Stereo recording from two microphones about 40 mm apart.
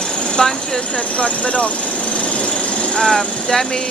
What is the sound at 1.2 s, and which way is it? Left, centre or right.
Speech, left.